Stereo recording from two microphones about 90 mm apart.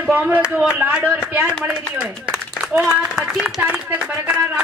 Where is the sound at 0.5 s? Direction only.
5° right (ahead or behind).